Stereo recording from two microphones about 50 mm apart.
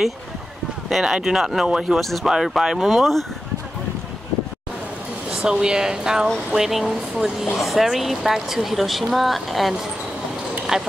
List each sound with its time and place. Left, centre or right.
0.8 s speech: centre
1.7 s speech: centre
2.0 s a woman's voice: centre
5.3 s a woman's voice: centre